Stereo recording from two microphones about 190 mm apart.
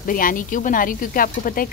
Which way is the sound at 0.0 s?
45° left (ahead or behind).